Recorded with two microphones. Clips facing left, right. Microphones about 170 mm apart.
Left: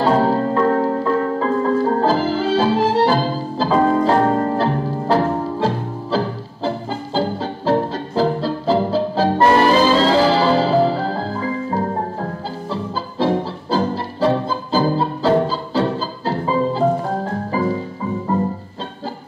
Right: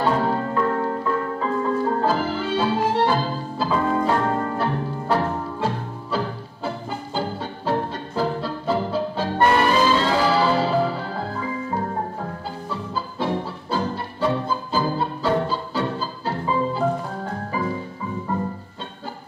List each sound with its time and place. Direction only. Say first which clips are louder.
0.0 s music: left 5 dB; 35° left (ahead or behind)
13.2 s music: left 8 dB; 35° left (ahead or behind)